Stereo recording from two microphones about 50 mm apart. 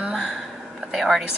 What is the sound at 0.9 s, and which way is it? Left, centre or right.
Speech, centre.